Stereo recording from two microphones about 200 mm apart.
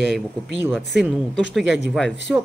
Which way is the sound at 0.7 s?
Centre (ahead or behind).